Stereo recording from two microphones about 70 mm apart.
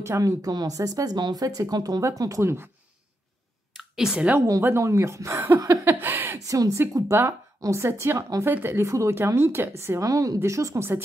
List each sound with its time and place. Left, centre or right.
0.2 s speech: right
2.0 s speech: right
2.4 s speech: right
3.9 s a woman's voice: centre
4.4 s speech: right
5.9 s speech: right
6.4 s speech: right
7.1 s speech: right
8.5 s speech: right
8.8 s speech: right
9.1 s speech: right
10.0 s speech: right